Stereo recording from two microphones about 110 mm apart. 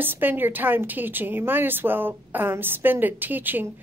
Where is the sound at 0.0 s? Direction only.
20° right (ahead or behind).